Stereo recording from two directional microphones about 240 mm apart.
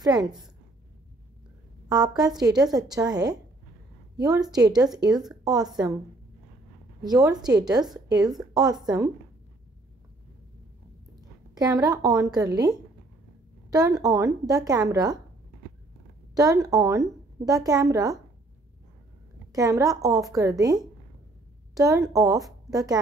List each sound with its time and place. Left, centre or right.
0.0 s a woman's voice: centre
1.9 s a woman's voice: centre
4.8 s a woman's voice: centre
7.0 s a woman's voice: centre
11.5 s a woman's voice: centre
16.3 s a woman's voice: centre
19.5 s a woman's voice: centre